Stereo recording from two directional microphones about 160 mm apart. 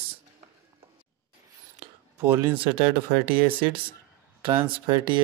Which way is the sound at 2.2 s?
15° right (ahead or behind).